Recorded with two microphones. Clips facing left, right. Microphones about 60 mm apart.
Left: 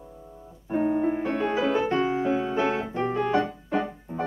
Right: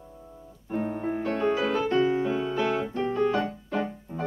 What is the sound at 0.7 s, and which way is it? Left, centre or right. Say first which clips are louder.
Music: left 5 dB; centre.